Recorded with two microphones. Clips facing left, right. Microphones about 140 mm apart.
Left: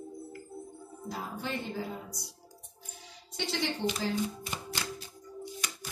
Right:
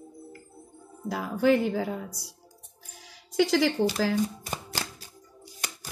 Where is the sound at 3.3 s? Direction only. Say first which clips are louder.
Right 11 dB; 90° right.